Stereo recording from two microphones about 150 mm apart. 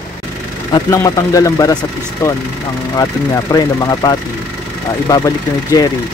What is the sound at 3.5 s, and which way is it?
Speech, 25° left (ahead or behind).